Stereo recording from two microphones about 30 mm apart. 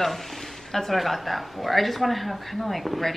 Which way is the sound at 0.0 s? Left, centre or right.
Centre.